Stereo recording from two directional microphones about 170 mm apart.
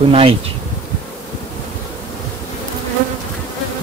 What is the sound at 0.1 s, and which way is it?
Speech, 35° right (ahead or behind).